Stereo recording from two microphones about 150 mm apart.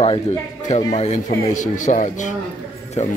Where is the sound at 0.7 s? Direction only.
50° left (ahead or behind).